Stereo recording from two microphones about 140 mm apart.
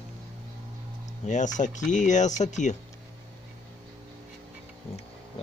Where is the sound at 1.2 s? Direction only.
60° left (ahead or behind).